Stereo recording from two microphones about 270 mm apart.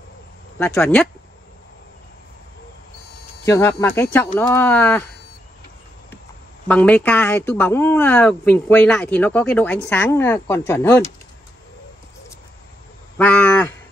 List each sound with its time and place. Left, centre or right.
0.6 s speech: centre
3.4 s speech: centre
6.7 s speech: centre
13.2 s cattle: centre